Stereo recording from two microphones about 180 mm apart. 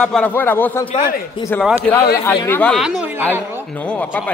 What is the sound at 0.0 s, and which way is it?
A man's voice, 5° left (ahead or behind).